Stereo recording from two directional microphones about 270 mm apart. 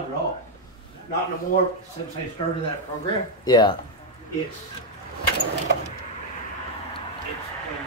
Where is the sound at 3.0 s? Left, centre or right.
Centre.